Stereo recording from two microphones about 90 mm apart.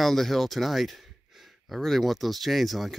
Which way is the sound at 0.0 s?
Centre (ahead or behind).